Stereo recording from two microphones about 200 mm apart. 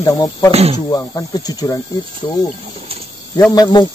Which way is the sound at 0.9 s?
15° left (ahead or behind).